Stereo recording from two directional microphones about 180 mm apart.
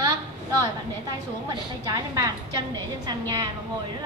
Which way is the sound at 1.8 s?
20° right (ahead or behind).